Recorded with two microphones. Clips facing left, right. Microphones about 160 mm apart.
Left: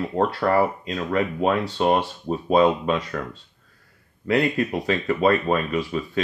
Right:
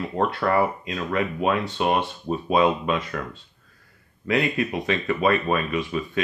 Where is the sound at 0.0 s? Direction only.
35° left (ahead or behind).